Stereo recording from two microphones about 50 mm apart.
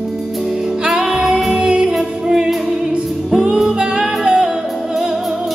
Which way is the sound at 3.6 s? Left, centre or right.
Centre.